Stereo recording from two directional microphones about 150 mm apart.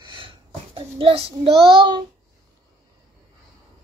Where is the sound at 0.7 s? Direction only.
35° right (ahead or behind).